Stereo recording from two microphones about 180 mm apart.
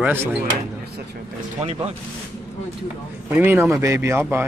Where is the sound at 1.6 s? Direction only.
35° right (ahead or behind).